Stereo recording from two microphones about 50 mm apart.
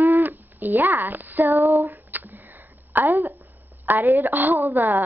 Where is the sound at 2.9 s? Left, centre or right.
Right.